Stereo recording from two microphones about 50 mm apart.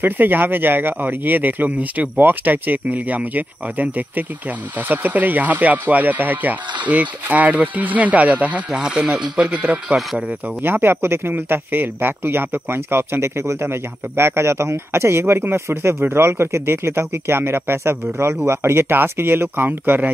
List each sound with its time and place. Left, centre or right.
0.0 s speech: right
10.6 s speech: right
15.8 s speech: right